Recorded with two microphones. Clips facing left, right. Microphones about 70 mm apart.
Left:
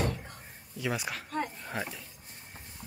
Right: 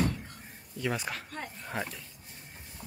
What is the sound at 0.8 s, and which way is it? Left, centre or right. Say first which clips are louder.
Speech: even; centre.